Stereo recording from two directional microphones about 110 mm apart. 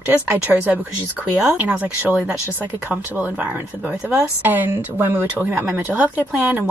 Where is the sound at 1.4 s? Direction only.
10° right (ahead or behind).